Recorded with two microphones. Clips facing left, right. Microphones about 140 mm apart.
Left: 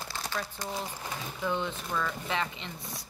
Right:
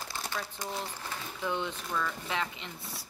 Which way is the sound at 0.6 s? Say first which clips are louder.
Left 1 dB; 10° left (ahead or behind).